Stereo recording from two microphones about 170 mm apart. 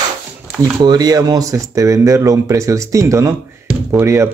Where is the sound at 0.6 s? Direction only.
25° right (ahead or behind).